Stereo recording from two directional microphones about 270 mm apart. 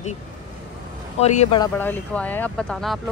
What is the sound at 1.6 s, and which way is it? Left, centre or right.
A woman's voice, centre.